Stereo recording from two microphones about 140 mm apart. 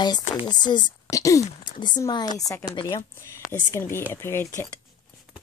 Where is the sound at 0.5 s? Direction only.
30° left (ahead or behind).